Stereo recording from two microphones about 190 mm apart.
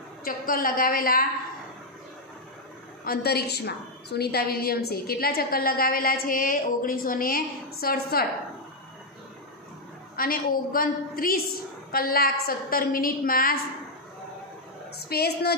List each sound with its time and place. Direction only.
0.2 s a woman's voice: 50° left (ahead or behind)
3.0 s a woman's voice: 55° left (ahead or behind)
10.1 s a woman's voice: 50° left (ahead or behind)
15.0 s a woman's voice: 55° left (ahead or behind)